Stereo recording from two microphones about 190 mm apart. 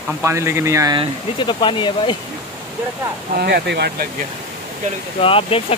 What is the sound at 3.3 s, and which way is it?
Speech, 60° right (ahead or behind).